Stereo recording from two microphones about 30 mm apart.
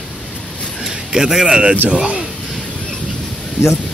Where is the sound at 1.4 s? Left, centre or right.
Right.